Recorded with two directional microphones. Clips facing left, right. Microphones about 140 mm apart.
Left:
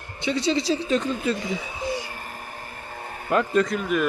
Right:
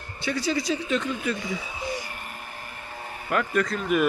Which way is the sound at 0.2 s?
25° left (ahead or behind).